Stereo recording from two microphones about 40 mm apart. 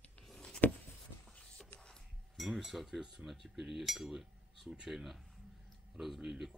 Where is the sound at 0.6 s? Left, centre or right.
Left.